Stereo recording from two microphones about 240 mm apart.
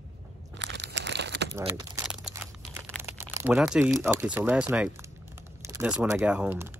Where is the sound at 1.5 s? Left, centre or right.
Centre.